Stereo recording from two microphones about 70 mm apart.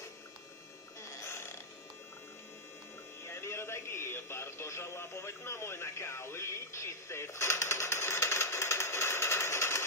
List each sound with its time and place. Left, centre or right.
1.0 s burping: left
3.3 s radio: left